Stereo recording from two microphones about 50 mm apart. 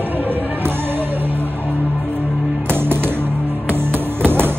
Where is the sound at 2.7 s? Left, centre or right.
Right.